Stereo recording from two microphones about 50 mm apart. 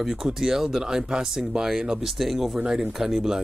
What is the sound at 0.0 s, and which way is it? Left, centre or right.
Speech, centre.